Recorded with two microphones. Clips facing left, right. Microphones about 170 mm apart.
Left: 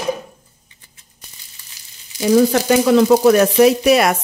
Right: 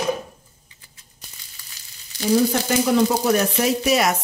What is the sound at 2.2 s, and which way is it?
Speech, 90° left.